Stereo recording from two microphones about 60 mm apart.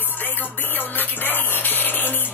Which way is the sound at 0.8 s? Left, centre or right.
Left.